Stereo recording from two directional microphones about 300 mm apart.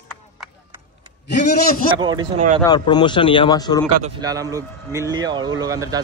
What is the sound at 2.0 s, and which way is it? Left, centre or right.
Speech, centre.